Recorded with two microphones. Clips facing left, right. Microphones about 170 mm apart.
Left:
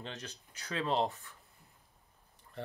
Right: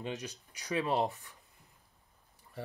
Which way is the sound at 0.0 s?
15° right (ahead or behind).